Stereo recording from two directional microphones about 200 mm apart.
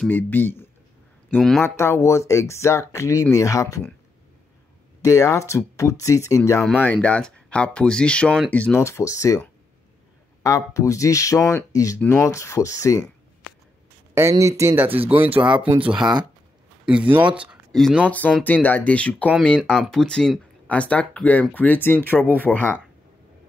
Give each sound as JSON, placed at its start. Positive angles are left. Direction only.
{"t": 0.0, "sound": "speech", "side_deg": 10}
{"t": 5.0, "sound": "speech", "side_deg": 15}
{"t": 6.6, "sound": "speech", "side_deg": 5}
{"t": 14.3, "sound": "speech", "side_deg": -15}
{"t": 18.4, "sound": "speech", "side_deg": 10}